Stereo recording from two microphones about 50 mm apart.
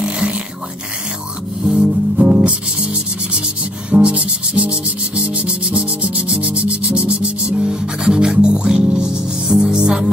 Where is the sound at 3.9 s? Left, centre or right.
Right.